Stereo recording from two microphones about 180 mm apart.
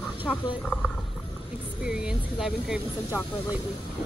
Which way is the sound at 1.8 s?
5° right (ahead or behind).